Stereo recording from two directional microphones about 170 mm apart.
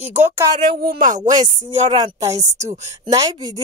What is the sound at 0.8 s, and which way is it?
Speech, 55° right (ahead or behind).